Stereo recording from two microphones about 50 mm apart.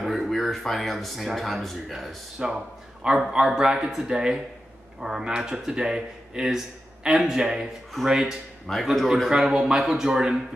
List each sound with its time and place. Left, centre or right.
0.0 s speech: centre
3.0 s speech: centre
8.9 s speech: centre
9.3 s speech: centre